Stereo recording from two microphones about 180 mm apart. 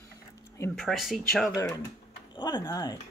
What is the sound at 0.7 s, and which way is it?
Speech, centre (ahead or behind).